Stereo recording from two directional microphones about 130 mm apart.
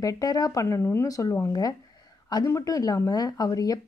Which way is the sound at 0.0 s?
30° left (ahead or behind).